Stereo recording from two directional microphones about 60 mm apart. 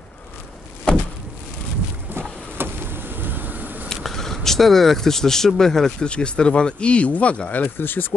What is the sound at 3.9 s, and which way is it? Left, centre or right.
Speech, centre.